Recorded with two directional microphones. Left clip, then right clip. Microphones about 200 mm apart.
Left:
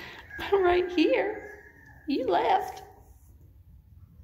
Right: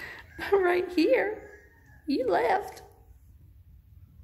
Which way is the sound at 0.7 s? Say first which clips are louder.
Left 1 dB; 90° right.